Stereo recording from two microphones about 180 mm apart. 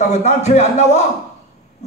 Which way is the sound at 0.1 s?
40° left (ahead or behind).